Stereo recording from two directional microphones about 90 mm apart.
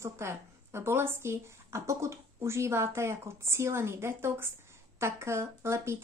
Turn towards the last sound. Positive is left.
turn(degrees=-30)  # may be behind; listen again after turning